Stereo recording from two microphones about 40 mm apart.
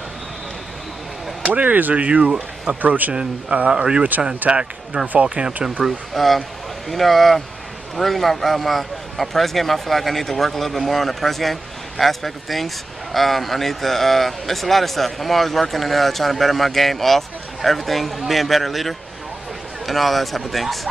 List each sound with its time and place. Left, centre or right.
1.4 s speech: right
2.0 s speech: right
2.8 s speech: right
3.7 s speech: centre
4.4 s speech: right
5.2 s speech: right
6.1 s speech: centre